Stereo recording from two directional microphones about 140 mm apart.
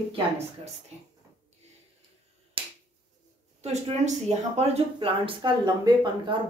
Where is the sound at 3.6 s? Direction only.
50° right (ahead or behind).